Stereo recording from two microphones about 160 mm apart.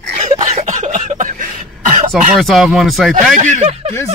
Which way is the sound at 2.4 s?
Centre (ahead or behind).